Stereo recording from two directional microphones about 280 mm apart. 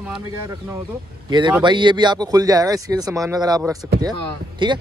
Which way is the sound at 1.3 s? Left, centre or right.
Centre.